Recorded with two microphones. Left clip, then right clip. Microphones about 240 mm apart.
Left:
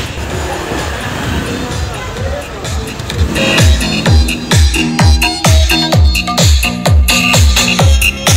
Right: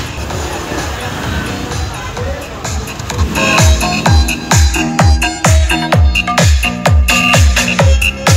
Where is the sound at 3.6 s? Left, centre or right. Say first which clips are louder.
Right 1 dB; right.